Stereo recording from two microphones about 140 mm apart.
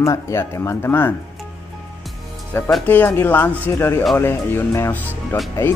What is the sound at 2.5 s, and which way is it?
Speech, 20° left (ahead or behind).